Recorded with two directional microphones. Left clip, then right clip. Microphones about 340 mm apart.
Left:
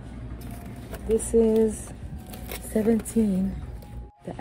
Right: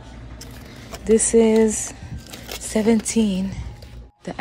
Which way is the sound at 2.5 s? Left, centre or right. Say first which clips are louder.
Right 5 dB; centre.